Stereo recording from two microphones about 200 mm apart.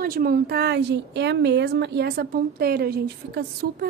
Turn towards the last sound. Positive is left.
turn(degrees=-50)  # may be behind; listen again after turning